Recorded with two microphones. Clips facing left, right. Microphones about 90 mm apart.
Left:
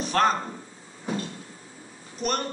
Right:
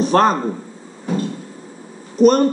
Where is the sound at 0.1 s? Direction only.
35° right (ahead or behind).